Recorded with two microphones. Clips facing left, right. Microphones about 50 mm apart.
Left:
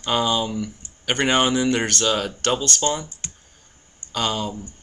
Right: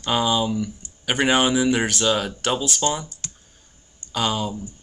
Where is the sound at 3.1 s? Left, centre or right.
Left.